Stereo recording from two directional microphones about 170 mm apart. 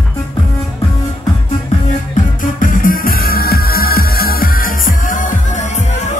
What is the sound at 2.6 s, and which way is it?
Music, 55° left (ahead or behind).